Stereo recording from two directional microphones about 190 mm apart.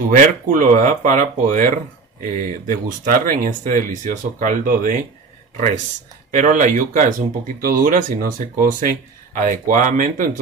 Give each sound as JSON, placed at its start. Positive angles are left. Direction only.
{"t": 0.1, "sound": "speech", "side_deg": -45}
{"t": 6.3, "sound": "speech", "side_deg": -40}